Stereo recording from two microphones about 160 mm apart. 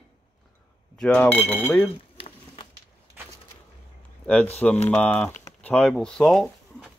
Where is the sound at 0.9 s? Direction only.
5° left (ahead or behind).